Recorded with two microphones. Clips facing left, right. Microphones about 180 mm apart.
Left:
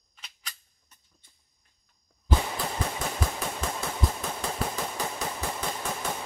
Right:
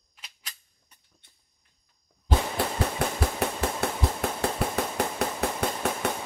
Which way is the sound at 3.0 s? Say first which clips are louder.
Right 4 dB; 65° right (ahead or behind).